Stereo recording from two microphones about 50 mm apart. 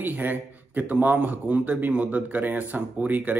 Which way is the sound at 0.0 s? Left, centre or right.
Right.